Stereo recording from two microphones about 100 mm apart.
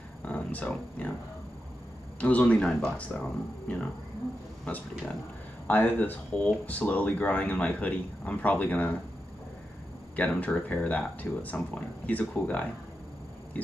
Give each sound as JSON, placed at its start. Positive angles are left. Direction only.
{"t": 0.2, "sound": "music", "side_deg": 15}
{"t": 2.1, "sound": "speech", "side_deg": 15}
{"t": 10.1, "sound": "speech", "side_deg": 15}